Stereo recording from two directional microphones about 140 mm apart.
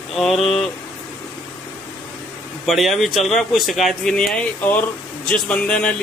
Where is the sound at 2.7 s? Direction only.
Centre (ahead or behind).